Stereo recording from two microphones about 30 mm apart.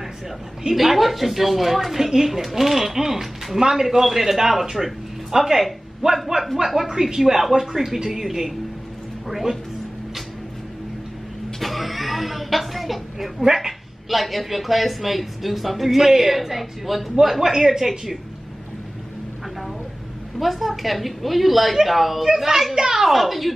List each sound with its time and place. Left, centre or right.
0.7 s speech: centre
6.0 s a man's voice: right
6.6 s speech: centre
11.6 s a sound: centre
13.4 s speech: centre
20.3 s speech: centre
23.0 s speech: centre